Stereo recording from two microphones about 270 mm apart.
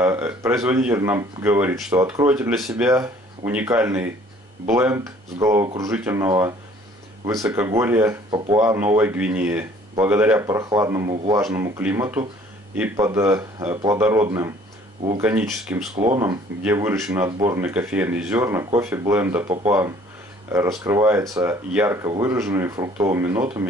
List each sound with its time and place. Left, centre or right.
0.0 s speech: centre
15.9 s speech: right
16.2 s speech: centre